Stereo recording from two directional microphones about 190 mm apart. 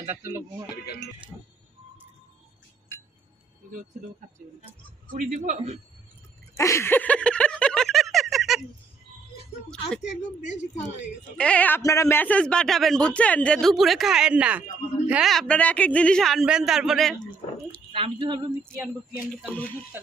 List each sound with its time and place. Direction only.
1.3 s a man's voice: 5° left (ahead or behind)
5.1 s a man's voice: 40° right (ahead or behind)
6.5 s a sound: 15° left (ahead or behind); by 8.6 s centre (ahead or behind)
10.0 s speech: 40° left (ahead or behind)
11.3 s a man's voice: 5° left (ahead or behind)
17.9 s speech: 25° right (ahead or behind)
18.7 s a sound: 10° right (ahead or behind)
19.4 s speech: 10° left (ahead or behind)